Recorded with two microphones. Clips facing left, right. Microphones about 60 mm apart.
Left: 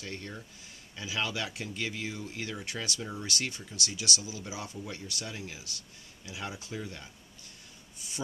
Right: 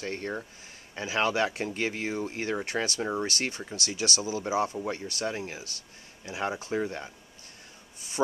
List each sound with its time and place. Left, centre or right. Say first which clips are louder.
0.0 s speech: right 8 dB; right